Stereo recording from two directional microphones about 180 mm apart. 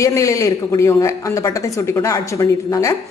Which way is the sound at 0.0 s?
15° left (ahead or behind).